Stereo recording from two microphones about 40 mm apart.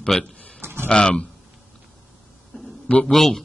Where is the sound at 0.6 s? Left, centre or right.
Right.